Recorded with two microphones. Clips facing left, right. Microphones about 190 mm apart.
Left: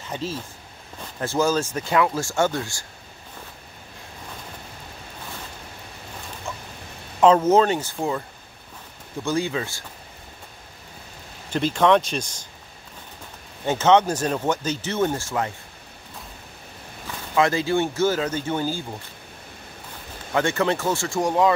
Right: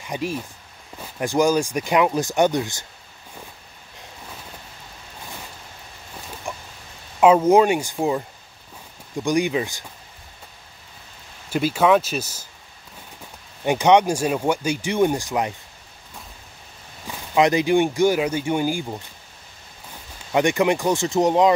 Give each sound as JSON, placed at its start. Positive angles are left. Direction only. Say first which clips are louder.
{"t": 0.0, "sound": "speech", "louder": "right 3 dB", "side_deg": -15}
{"t": 6.5, "sound": "chicken", "louder": "right 2 dB", "side_deg": -15}
{"t": 7.2, "sound": "speech", "louder": "right 2 dB", "side_deg": -10}
{"t": 9.2, "sound": "speech", "louder": "right 4 dB", "side_deg": -15}
{"t": 11.5, "sound": "speech", "louder": "right 1 dB", "side_deg": -10}
{"t": 13.7, "sound": "speech", "louder": "right 2 dB", "side_deg": -15}
{"t": 17.1, "sound": "a sound", "louder": "right 1 dB", "side_deg": -15}
{"t": 17.4, "sound": "speech", "louder": "right 3 dB", "side_deg": -15}
{"t": 20.3, "sound": "speech", "louder": "right 3 dB", "side_deg": -15}